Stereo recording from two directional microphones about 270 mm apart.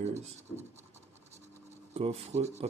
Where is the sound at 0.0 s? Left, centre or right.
Right.